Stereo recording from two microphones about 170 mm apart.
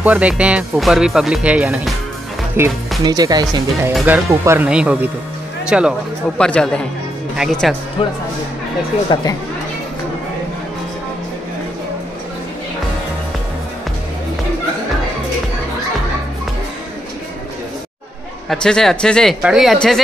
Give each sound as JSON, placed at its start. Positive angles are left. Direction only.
{"t": 0.0, "sound": "speech", "side_deg": -10}
{"t": 6.3, "sound": "speech", "side_deg": 5}
{"t": 8.0, "sound": "speech", "side_deg": 30}
{"t": 18.5, "sound": "speech", "side_deg": 5}